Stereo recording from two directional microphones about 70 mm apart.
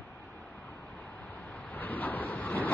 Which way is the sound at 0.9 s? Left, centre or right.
Left.